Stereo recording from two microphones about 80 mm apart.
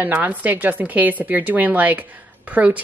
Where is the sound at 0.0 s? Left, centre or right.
Right.